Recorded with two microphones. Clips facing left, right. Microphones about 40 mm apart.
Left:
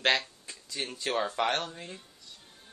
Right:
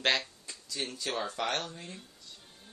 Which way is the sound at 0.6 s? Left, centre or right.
Centre.